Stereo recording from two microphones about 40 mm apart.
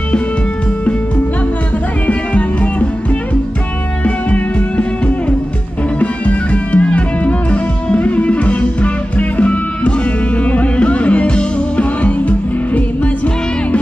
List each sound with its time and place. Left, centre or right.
2.0 s music: left
4.0 s music: left